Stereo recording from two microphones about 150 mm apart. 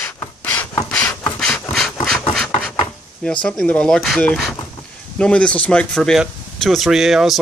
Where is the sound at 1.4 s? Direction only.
5° left (ahead or behind).